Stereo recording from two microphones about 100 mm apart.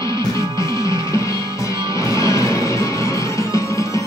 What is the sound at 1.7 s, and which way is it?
Music, 50° right (ahead or behind).